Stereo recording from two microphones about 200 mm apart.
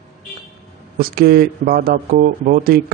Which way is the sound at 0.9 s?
50° right (ahead or behind).